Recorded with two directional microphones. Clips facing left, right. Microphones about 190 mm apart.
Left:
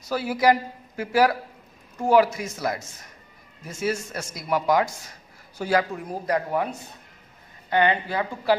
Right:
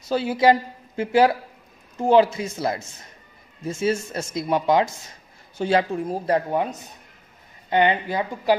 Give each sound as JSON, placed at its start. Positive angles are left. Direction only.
{"t": 0.1, "sound": "speech", "side_deg": -25}